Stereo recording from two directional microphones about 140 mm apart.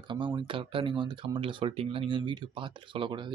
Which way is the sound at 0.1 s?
35° right (ahead or behind).